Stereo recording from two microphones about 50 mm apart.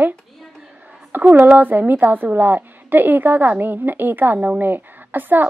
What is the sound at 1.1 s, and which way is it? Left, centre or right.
A woman's voice, right.